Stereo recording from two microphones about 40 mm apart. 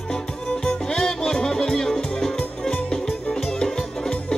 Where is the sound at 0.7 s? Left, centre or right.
Centre.